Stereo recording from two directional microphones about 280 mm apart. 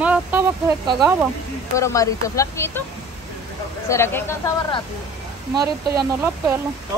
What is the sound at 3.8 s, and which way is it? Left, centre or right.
Speech, centre.